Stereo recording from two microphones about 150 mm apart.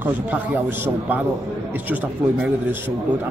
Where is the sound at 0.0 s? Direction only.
10° right (ahead or behind).